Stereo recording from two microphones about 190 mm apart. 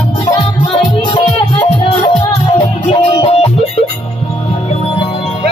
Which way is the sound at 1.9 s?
25° left (ahead or behind).